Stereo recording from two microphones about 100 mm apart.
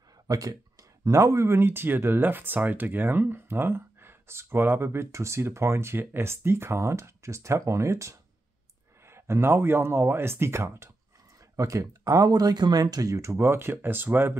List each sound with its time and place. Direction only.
0.3 s speech: 40° right (ahead or behind); by 14.3 s 20° right (ahead or behind)